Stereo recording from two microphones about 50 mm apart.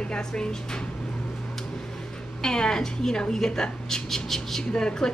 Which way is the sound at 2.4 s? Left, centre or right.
Centre.